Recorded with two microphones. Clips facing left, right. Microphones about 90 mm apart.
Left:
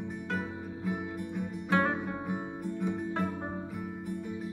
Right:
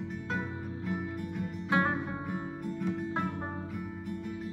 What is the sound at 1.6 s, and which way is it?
Music, 15° right (ahead or behind).